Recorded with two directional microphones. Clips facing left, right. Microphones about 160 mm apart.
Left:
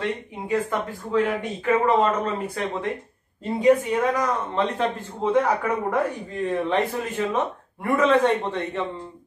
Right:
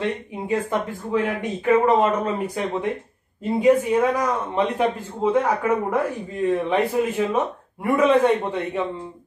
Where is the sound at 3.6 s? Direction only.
5° right (ahead or behind).